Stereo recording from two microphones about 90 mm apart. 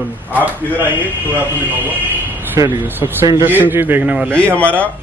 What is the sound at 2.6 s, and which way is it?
Speech, 40° right (ahead or behind).